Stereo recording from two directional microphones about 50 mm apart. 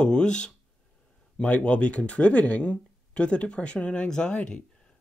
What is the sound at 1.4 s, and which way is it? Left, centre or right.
Speech, left.